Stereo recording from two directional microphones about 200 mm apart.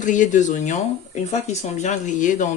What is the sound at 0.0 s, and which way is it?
Speech, 40° left (ahead or behind).